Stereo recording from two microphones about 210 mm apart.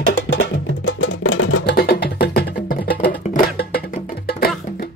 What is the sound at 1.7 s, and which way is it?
Music, 50° left (ahead or behind).